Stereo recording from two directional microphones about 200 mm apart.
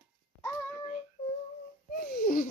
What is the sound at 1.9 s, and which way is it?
Babbling, 45° left (ahead or behind).